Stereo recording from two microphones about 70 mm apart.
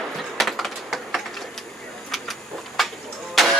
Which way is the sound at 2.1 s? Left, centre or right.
Centre.